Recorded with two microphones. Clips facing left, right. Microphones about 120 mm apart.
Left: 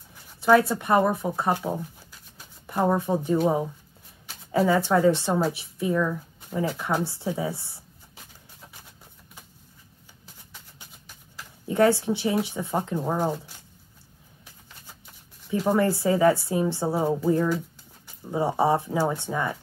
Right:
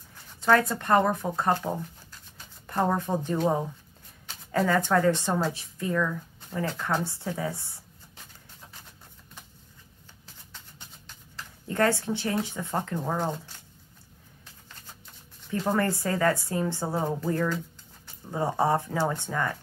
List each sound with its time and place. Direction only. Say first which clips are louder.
0.1 s a woman's voice: left 4 dB; 10° left (ahead or behind)
10.2 s a sound: left 1 dB; 10° left (ahead or behind)
15.4 s a woman's voice: left 4 dB; 10° left (ahead or behind)